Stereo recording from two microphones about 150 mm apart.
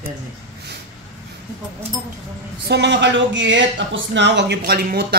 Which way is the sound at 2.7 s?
90° right.